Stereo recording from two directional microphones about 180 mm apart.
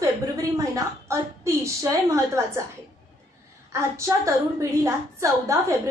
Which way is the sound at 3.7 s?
15° right (ahead or behind).